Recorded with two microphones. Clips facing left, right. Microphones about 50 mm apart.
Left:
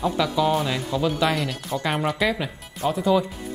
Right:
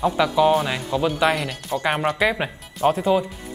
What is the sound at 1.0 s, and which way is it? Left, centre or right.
Speech, centre.